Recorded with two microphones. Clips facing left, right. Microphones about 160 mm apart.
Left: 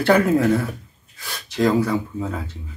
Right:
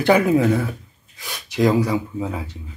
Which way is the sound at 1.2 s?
20° right (ahead or behind).